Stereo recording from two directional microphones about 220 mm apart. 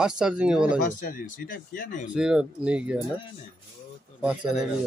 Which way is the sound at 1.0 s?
35° left (ahead or behind).